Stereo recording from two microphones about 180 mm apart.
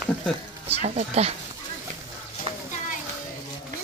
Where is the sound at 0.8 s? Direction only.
40° right (ahead or behind).